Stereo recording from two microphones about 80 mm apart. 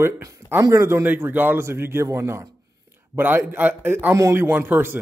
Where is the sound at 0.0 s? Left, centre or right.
Right.